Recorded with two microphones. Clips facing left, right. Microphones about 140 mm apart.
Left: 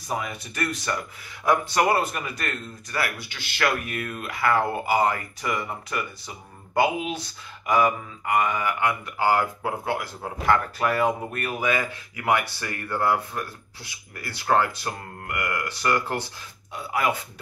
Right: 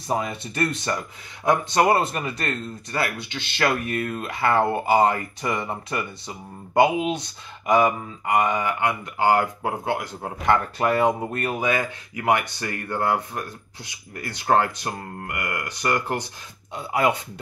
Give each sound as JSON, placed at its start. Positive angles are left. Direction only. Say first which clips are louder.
{"t": 0.1, "sound": "speech", "louder": "right 4 dB", "side_deg": -25}